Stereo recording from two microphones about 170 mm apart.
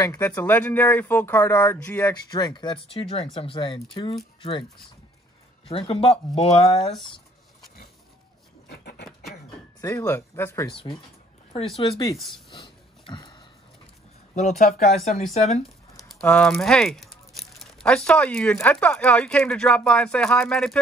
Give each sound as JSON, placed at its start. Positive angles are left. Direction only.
{"t": 0.4, "sound": "speech", "side_deg": 10}
{"t": 2.3, "sound": "speech", "side_deg": 25}
{"t": 5.7, "sound": "speech", "side_deg": 35}
{"t": 8.6, "sound": "patter", "side_deg": 70}
{"t": 9.8, "sound": "speech", "side_deg": 15}
{"t": 11.7, "sound": "speech", "side_deg": 25}
{"t": 12.5, "sound": "a sound", "side_deg": 30}
{"t": 14.3, "sound": "speech", "side_deg": 45}
{"t": 16.1, "sound": "speech", "side_deg": 5}